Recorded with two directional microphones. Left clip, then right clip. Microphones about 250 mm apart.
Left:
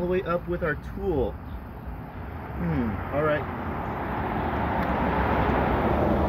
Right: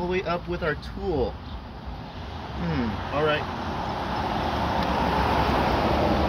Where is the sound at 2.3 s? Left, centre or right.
Right.